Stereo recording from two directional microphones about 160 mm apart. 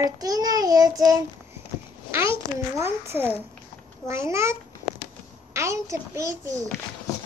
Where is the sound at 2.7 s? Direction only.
15° right (ahead or behind).